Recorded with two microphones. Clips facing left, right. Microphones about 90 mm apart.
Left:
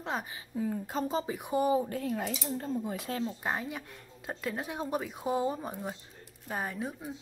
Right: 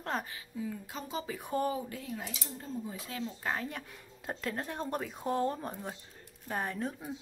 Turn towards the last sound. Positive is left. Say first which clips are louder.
# even
turn(degrees=5)  # may be behind; listen again after turning